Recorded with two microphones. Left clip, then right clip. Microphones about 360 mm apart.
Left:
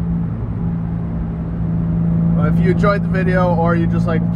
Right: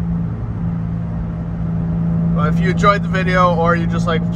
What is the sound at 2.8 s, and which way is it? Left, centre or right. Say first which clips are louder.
Speech: right 6 dB; right.